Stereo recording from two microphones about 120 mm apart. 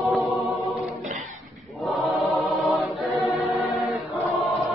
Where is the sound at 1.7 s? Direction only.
Centre (ahead or behind).